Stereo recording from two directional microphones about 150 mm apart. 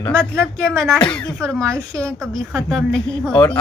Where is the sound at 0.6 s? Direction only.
Centre (ahead or behind).